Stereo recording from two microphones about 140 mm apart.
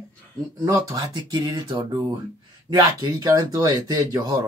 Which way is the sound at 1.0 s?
35° right (ahead or behind).